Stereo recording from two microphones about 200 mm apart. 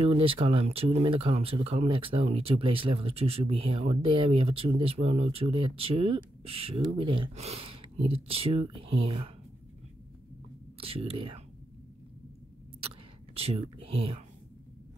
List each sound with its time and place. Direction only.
0.0 s speech: 25° right (ahead or behind)
10.8 s speech: 30° right (ahead or behind)
13.3 s speech: 30° right (ahead or behind)